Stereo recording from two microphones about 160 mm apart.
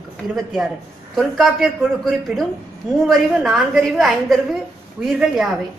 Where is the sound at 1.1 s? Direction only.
Centre (ahead or behind).